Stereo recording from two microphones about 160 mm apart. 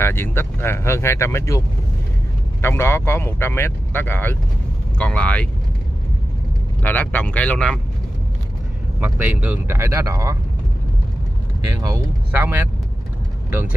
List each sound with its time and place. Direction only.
0.0 s speech: 15° left (ahead or behind)
2.6 s speech: 15° left (ahead or behind)
6.8 s speech: 10° left (ahead or behind)
9.0 s speech: 10° right (ahead or behind)
11.7 s speech: 20° right (ahead or behind)